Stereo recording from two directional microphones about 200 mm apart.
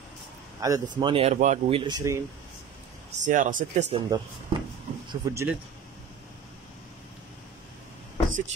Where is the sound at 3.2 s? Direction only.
40° right (ahead or behind).